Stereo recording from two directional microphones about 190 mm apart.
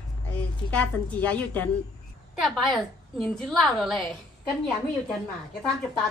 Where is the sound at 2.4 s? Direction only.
Centre (ahead or behind).